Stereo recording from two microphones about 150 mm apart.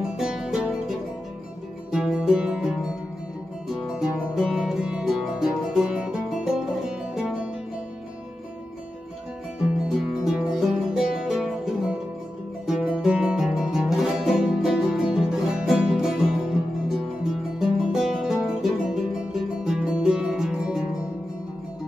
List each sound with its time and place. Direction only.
0.2 s music: 5° right (ahead or behind)
9.8 s music: centre (ahead or behind)
17.6 s music: centre (ahead or behind)